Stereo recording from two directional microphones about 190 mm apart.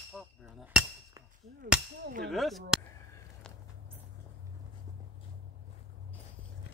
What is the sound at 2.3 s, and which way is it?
Speech, centre (ahead or behind).